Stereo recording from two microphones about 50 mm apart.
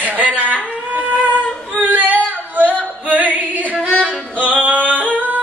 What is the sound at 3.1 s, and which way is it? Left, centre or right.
Music, right.